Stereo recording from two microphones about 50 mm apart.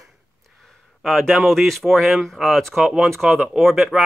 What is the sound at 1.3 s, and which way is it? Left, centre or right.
Speech, centre.